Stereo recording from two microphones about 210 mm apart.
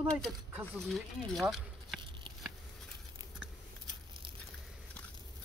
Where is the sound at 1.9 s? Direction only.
20° right (ahead or behind).